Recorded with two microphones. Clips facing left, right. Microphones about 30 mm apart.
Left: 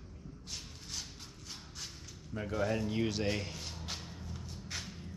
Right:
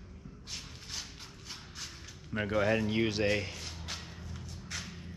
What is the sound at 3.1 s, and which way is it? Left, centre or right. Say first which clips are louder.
Music: right 4 dB; centre.